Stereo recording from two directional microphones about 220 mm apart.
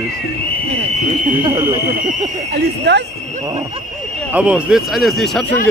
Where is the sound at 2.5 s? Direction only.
50° right (ahead or behind).